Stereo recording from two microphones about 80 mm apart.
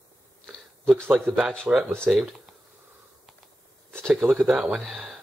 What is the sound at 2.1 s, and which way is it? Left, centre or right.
Speech, centre.